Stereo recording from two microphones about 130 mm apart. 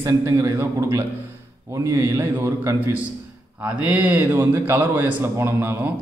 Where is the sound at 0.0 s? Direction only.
25° right (ahead or behind).